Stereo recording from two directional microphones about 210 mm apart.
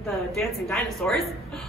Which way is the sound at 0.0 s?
Centre (ahead or behind).